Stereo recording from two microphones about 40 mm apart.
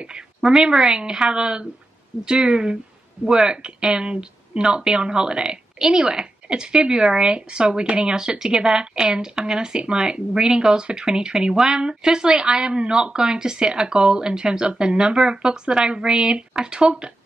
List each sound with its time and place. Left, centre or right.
0.4 s a woman's voice: centre